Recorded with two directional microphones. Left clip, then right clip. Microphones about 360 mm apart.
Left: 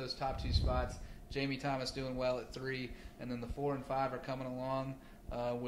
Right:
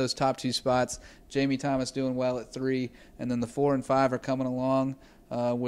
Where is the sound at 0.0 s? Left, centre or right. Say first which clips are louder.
Right 12 dB; right.